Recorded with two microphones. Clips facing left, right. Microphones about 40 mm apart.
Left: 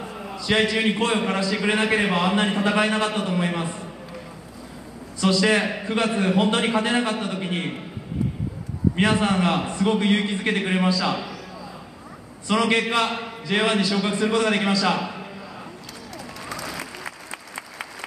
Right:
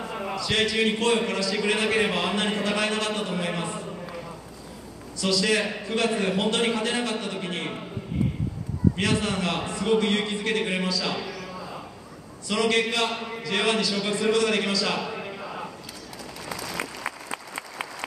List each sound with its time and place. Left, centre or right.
0.5 s a man's voice: centre
5.2 s a man's voice: centre
8.9 s a man's voice: left
12.4 s a man's voice: left
13.0 s a man's voice: centre
13.4 s a man's voice: centre
14.3 s a man's voice: left
17.0 s applause: centre